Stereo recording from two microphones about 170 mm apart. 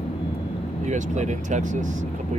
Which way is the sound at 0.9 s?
45° right (ahead or behind).